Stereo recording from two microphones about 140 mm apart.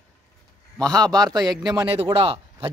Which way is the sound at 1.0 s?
30° right (ahead or behind).